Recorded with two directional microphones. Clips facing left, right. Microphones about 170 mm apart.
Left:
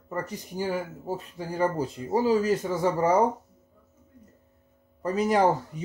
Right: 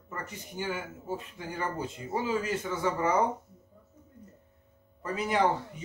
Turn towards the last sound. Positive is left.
turn(degrees=40)  # may be behind; listen again after turning